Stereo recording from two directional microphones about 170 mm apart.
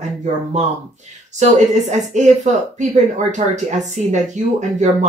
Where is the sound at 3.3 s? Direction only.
45° right (ahead or behind).